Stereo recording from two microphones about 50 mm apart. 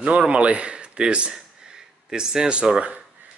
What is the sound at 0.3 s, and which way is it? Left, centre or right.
Speech, right.